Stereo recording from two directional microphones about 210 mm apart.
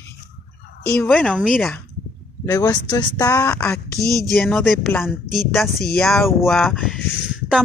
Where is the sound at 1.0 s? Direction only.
Centre (ahead or behind).